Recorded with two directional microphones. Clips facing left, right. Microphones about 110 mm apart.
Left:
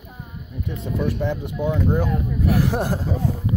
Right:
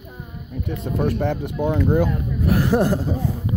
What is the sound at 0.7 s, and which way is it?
Speech, 55° right (ahead or behind).